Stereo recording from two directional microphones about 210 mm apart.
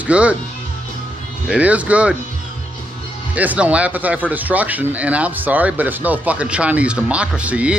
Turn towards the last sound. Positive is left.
turn(degrees=-5)  # may be behind; listen again after turning